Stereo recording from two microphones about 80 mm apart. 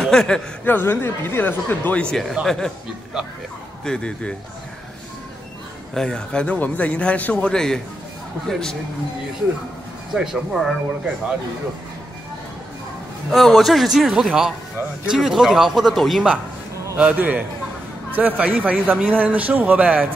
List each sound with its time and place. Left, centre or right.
0.0 s speech: centre
0.7 s speech: left
2.4 s speech: centre
3.8 s a man's voice: centre
5.9 s a man's voice: centre
7.5 s a man's voice: centre
10.1 s speech: centre
13.3 s speech: centre
16.9 s a man's voice: centre